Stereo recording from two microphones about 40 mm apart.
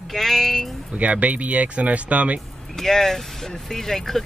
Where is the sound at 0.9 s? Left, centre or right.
Right.